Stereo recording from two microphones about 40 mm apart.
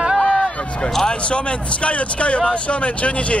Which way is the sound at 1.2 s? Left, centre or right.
Left.